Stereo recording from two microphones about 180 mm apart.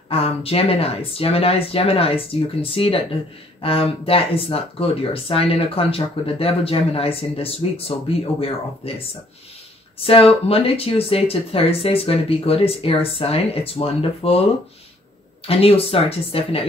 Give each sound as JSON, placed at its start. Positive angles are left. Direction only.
{"t": 0.1, "sound": "speech", "side_deg": 30}
{"t": 10.0, "sound": "speech", "side_deg": 30}
{"t": 15.4, "sound": "speech", "side_deg": 30}